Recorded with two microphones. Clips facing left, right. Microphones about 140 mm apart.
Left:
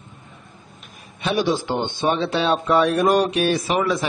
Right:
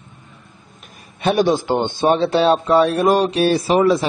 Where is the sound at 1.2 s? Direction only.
45° right (ahead or behind).